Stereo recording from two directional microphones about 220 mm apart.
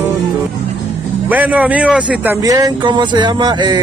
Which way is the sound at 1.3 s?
5° right (ahead or behind).